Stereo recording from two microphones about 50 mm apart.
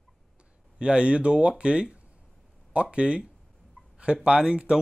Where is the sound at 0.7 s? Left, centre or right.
Right.